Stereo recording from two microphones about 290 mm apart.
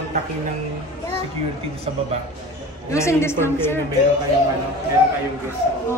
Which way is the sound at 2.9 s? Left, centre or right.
Centre.